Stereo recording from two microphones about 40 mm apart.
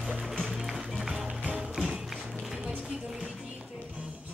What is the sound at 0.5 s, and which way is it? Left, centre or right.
Music, centre.